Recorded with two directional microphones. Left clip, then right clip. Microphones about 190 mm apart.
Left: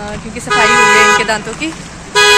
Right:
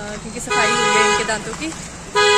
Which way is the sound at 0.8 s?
35° left (ahead or behind).